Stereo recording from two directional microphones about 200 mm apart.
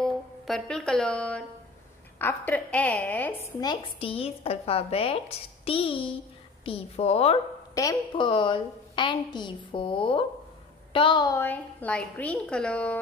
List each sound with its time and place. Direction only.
0.5 s a woman's voice: 5° left (ahead or behind); by 7.3 s 30° left (ahead or behind)
7.7 s a woman's voice: 20° left (ahead or behind)